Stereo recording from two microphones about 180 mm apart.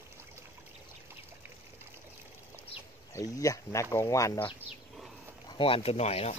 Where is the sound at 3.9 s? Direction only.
15° left (ahead or behind).